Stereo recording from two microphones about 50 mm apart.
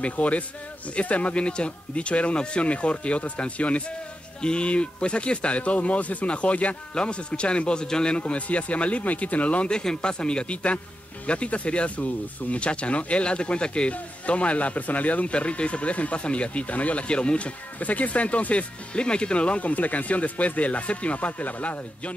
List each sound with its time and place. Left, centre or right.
0.0 s speech: left
9.7 s speech: centre